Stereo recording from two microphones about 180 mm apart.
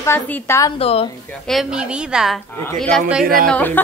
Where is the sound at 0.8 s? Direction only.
35° left (ahead or behind).